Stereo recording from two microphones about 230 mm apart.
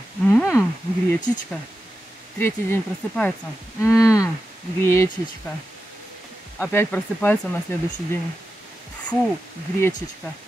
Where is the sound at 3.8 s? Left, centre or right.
Centre.